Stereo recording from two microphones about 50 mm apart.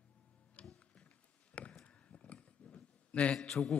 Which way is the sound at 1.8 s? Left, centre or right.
Left.